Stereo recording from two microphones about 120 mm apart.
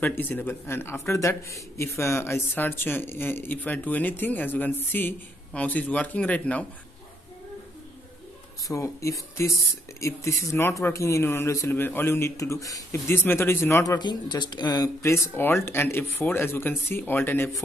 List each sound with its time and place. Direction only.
0.0 s speech: 15° left (ahead or behind)
8.6 s speech: 25° left (ahead or behind)
13.9 s speech: 35° left (ahead or behind); by 17.5 s 15° left (ahead or behind)